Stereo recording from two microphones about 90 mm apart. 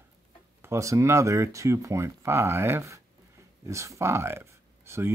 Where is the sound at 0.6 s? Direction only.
35° right (ahead or behind).